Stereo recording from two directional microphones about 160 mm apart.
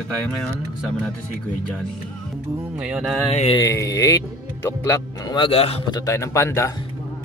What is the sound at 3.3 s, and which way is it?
Mantra, 45° left (ahead or behind).